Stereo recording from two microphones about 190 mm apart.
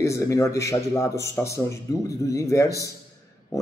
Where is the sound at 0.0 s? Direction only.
15° left (ahead or behind).